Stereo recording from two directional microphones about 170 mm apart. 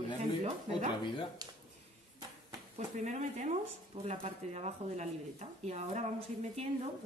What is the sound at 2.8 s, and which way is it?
Speech, 45° right (ahead or behind).